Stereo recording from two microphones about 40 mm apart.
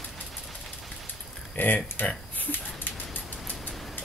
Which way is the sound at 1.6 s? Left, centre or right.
Left.